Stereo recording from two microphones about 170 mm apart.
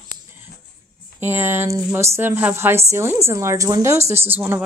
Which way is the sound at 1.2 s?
15° right (ahead or behind).